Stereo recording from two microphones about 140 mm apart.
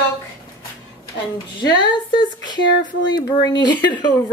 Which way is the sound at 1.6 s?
30° left (ahead or behind).